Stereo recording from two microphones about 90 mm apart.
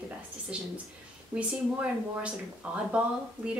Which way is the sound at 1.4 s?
15° right (ahead or behind).